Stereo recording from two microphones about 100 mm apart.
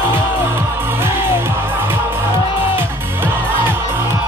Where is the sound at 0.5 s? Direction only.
25° right (ahead or behind).